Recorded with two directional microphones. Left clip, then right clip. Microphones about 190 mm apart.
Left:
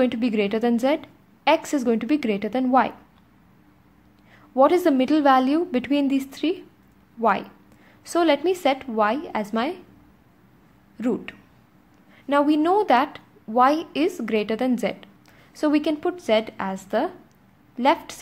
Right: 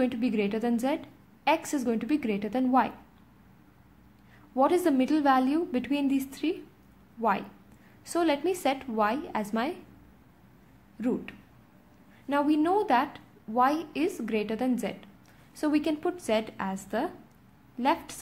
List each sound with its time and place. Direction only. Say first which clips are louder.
0.0 s a woman's voice: left 6 dB; 20° left (ahead or behind)
4.6 s a woman's voice: left 7 dB; 20° left (ahead or behind)
11.0 s a woman's voice: left 5 dB; 30° left (ahead or behind)